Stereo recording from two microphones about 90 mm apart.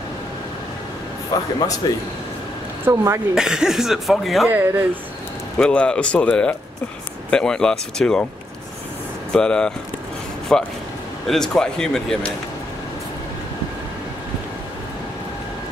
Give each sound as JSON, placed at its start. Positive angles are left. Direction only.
{"t": 1.8, "sound": "speech", "side_deg": 45}
{"t": 2.9, "sound": "a woman's voice", "side_deg": -35}
{"t": 3.3, "sound": "speech", "side_deg": -5}
{"t": 4.5, "sound": "speech", "side_deg": -20}
{"t": 5.6, "sound": "speech", "side_deg": 10}
{"t": 9.3, "sound": "speech", "side_deg": 10}